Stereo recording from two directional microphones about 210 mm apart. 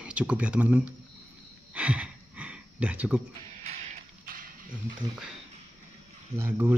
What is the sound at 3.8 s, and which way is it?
Mechanisms, 40° right (ahead or behind).